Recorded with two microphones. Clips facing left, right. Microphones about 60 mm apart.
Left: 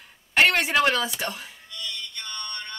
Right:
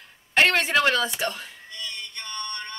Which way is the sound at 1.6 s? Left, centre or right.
Right.